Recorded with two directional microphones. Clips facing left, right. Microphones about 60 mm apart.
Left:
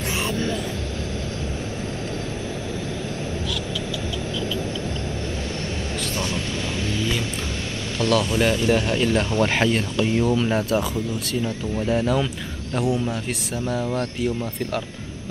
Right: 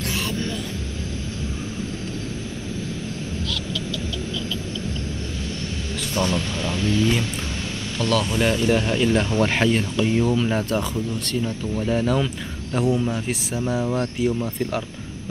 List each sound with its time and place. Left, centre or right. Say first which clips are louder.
8.0 s speech: left 1 dB; centre